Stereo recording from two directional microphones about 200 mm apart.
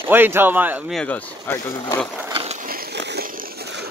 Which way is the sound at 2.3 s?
30° right (ahead or behind).